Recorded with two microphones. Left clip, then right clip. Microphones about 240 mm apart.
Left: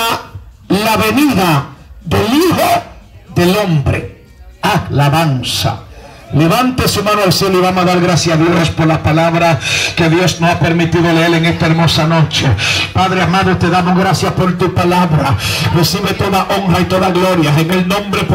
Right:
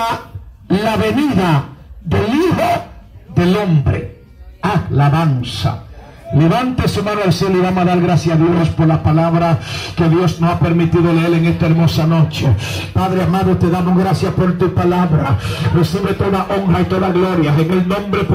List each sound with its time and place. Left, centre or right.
0.7 s a man's voice: left
12.0 s beatboxing: left